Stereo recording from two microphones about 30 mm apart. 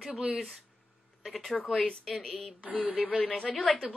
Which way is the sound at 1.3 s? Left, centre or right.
Centre.